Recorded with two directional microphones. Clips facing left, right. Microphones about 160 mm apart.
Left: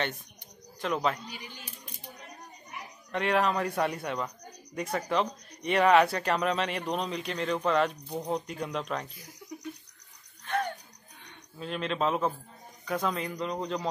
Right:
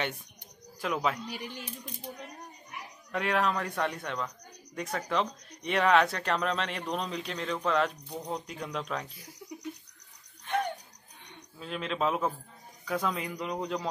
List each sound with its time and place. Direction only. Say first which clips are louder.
0.7 s speech: left 1 dB; 5° right (ahead or behind)
1.3 s speech: right 5 dB; 75° right (ahead or behind)
3.1 s speech: left 2 dB; centre (ahead or behind)
11.5 s speech: left 2 dB; centre (ahead or behind)